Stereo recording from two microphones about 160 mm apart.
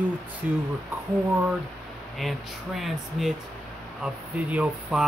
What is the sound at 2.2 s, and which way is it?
Speech, centre (ahead or behind).